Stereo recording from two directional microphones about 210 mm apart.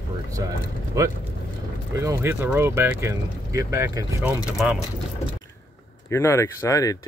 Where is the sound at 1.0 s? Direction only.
15° right (ahead or behind).